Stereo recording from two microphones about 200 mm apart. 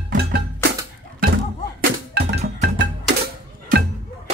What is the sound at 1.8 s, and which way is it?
Music, 55° right (ahead or behind).